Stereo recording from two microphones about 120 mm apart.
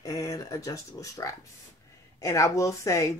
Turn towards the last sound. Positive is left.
turn(degrees=25)  # may be behind; listen again after turning